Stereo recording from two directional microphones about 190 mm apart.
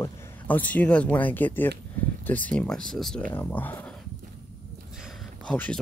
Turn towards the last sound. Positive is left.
turn(degrees=5)  # may be behind; listen again after turning